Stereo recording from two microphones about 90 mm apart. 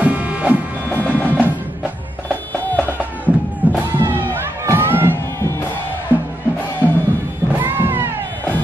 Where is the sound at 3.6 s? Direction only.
20° right (ahead or behind).